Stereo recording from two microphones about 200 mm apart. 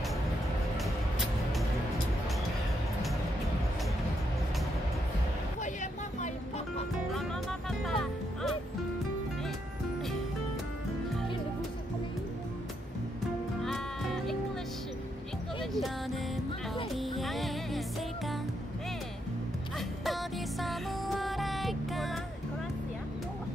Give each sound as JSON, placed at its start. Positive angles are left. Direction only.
{"t": 5.6, "sound": "vehicle", "side_deg": 40}
{"t": 7.8, "sound": "music", "side_deg": 0}
{"t": 13.7, "sound": "music", "side_deg": 0}
{"t": 15.6, "sound": "music", "side_deg": 0}
{"t": 20.1, "sound": "music", "side_deg": 0}